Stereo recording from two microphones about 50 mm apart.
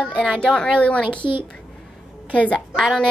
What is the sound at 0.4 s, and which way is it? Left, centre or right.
Speech, centre.